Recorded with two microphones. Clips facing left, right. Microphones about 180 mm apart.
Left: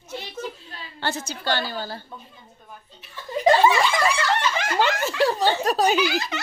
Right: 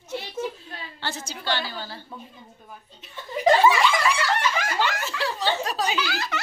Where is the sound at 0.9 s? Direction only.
50° left (ahead or behind).